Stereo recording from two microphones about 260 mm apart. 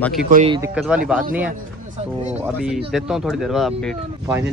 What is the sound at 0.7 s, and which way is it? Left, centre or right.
Speech, centre.